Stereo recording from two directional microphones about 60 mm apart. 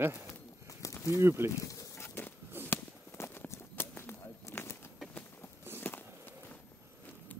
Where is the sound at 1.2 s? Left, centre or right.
Right.